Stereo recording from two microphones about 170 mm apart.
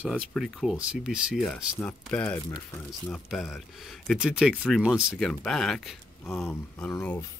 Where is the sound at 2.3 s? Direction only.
20° left (ahead or behind).